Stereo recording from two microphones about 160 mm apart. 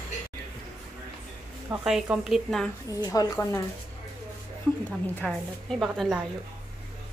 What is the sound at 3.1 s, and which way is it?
Speech, 20° left (ahead or behind).